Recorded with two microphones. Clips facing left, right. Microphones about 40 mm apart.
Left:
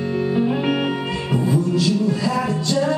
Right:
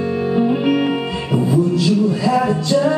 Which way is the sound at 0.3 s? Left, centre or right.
Centre.